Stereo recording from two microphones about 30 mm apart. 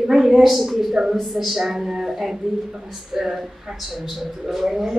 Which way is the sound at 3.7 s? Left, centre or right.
Centre.